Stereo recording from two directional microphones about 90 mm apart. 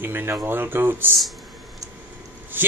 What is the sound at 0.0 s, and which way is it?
Speech, 25° right (ahead or behind).